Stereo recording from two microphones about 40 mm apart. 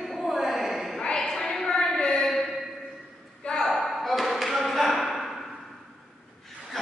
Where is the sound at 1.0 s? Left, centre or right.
Centre.